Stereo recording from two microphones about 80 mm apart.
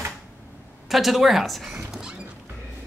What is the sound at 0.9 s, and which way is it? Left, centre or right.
Speech, centre.